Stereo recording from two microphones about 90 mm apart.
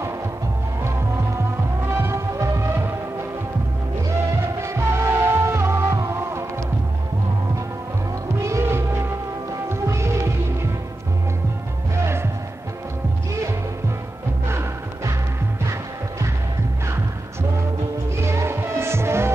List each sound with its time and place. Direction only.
2.0 s music: 30° right (ahead or behind)
4.6 s music: 30° right (ahead or behind)
8.5 s music: 30° right (ahead or behind)
9.7 s throbbing: 30° right (ahead or behind)
11.9 s music: 30° right (ahead or behind)
14.5 s music: 30° right (ahead or behind)
16.8 s music: 30° right (ahead or behind)